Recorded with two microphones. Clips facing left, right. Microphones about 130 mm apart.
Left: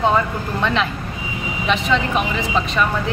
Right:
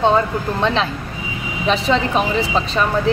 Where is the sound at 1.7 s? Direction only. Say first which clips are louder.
Right 2 dB; 35° right (ahead or behind).